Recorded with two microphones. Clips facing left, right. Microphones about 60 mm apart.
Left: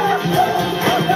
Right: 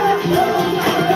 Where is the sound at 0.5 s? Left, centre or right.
Right.